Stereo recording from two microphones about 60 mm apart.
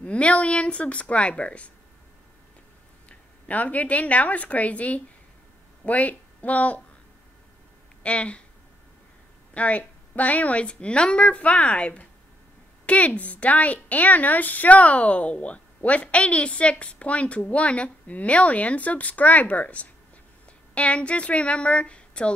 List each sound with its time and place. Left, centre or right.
0.0 s a woman's voice: left
3.1 s speech: left
8.0 s speech: left
9.5 s a woman's voice: left